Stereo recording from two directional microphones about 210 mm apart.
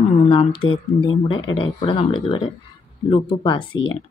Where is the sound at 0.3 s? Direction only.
25° left (ahead or behind).